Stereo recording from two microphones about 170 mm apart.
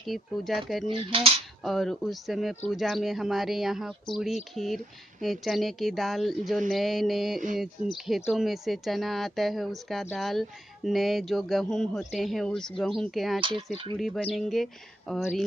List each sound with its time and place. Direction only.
0.0 s speech: centre (ahead or behind)
0.8 s speech: 35° right (ahead or behind)
1.6 s speech: centre (ahead or behind)
13.4 s speech: 30° right (ahead or behind)
13.9 s speech: centre (ahead or behind)